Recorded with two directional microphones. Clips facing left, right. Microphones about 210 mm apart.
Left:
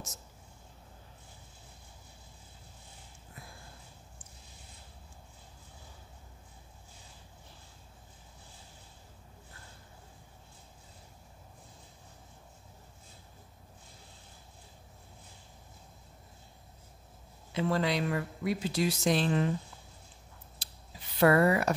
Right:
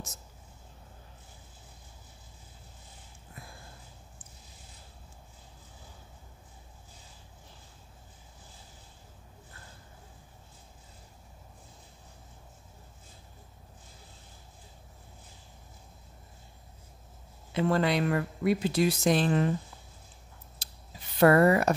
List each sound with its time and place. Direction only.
17.6 s speech: 55° right (ahead or behind)
20.6 s a sound: 45° right (ahead or behind)
21.2 s speech: 45° right (ahead or behind)